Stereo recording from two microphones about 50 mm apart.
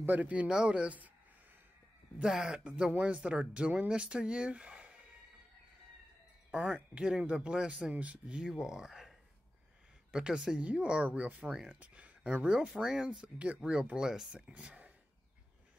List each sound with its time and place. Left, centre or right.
0.0 s speech: right
0.5 s speech: centre
2.2 s speech: centre
2.6 s speech: centre
6.5 s speech: centre
8.5 s speech: centre
10.1 s speech: centre
10.6 s speech: right
12.7 s speech: centre
13.4 s speech: right
14.4 s speech: right